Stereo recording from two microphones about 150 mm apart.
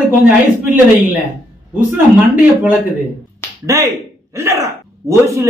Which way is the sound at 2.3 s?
15° right (ahead or behind).